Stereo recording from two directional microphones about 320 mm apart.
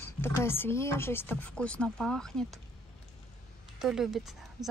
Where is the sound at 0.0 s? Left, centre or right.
Centre.